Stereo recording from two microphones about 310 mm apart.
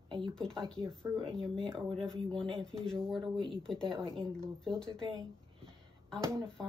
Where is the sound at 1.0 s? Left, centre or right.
Centre.